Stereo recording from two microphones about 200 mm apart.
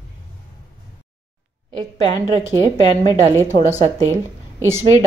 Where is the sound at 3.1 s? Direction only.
15° right (ahead or behind).